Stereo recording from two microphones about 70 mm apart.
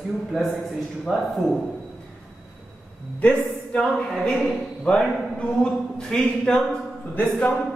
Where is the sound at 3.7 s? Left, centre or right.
Centre.